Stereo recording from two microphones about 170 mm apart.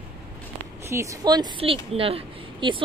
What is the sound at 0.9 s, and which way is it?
A woman's voice, 20° right (ahead or behind).